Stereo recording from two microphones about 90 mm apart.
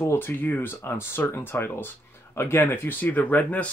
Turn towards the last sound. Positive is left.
turn(degrees=15)  # may be behind; listen again after turning